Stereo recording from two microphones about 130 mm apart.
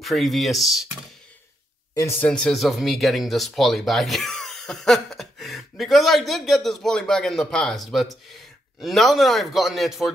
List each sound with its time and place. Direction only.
0.0 s speech: centre (ahead or behind)
2.0 s speech: 20° left (ahead or behind)
2.2 s speech: 5° left (ahead or behind)